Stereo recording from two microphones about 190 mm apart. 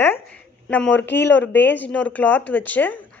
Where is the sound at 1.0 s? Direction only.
65° left (ahead or behind).